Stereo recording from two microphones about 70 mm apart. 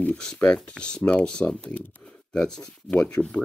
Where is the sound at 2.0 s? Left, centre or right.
Centre.